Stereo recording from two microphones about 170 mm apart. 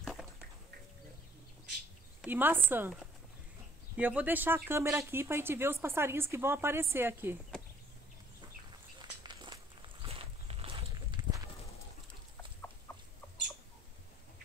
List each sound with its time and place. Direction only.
0.0 s a sound: centre (ahead or behind)
2.2 s speech: 10° right (ahead or behind)
9.0 s walk: 25° right (ahead or behind)
12.9 s chicken: 15° left (ahead or behind)